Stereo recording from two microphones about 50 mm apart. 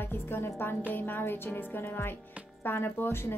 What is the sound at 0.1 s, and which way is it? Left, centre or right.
A woman's voice, left.